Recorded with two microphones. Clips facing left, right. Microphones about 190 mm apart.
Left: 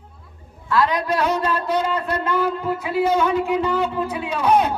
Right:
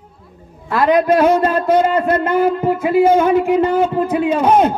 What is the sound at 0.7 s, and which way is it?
A man's voice, 50° right (ahead or behind).